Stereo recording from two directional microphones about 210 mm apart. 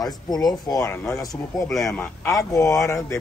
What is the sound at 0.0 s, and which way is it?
Speech, 20° left (ahead or behind).